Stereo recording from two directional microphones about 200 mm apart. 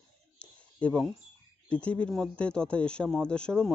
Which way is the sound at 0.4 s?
5° left (ahead or behind).